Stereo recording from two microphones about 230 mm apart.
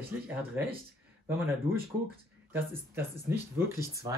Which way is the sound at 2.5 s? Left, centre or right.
Centre.